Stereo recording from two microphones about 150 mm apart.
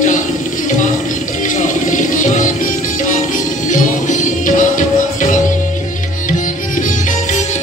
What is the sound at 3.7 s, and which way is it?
Music, 60° left (ahead or behind).